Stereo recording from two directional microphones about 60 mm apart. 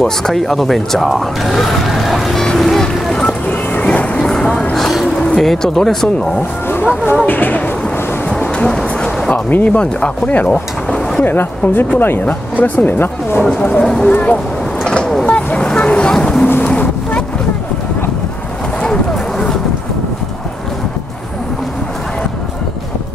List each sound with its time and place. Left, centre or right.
0.0 s speech: centre
3.8 s music: centre
4.7 s a sound: centre
5.2 s speech: centre
7.2 s speech: left
8.6 s a sound: centre
9.3 s speech: left
11.2 s speech: left
13.7 s speech: centre
14.1 s speech: left
14.9 s vehicle: centre
15.2 s boat: centre
16.4 s boat: left
18.8 s boat: centre